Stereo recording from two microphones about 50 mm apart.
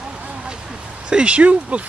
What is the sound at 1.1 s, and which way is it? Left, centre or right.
Speech, right.